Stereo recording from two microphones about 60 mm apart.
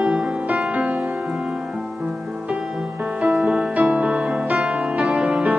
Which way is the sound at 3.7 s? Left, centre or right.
Centre.